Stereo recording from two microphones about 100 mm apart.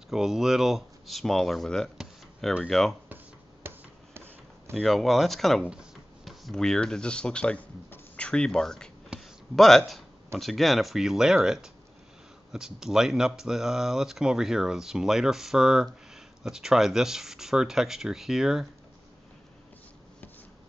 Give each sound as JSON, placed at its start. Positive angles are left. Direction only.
{"t": 0.1, "sound": "speech", "side_deg": -5}
{"t": 3.6, "sound": "a sound", "side_deg": -20}
{"t": 4.7, "sound": "speech", "side_deg": 0}